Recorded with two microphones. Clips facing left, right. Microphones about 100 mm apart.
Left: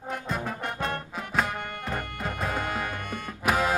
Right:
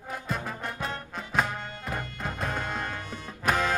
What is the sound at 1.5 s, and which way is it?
Music, 55° left (ahead or behind).